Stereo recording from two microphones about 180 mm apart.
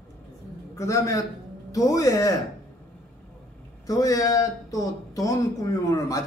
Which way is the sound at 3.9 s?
20° left (ahead or behind).